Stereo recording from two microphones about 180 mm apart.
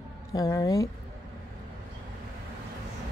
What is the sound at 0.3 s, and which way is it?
Speech, 20° left (ahead or behind).